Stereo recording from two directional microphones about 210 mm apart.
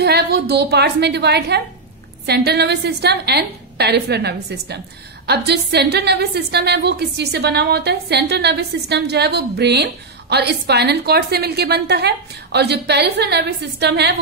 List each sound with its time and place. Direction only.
0.0 s a woman's voice: 50° right (ahead or behind)